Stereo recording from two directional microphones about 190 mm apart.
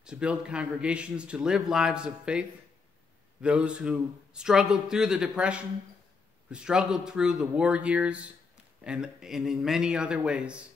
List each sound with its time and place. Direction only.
0.0 s a man's voice: 5° right (ahead or behind)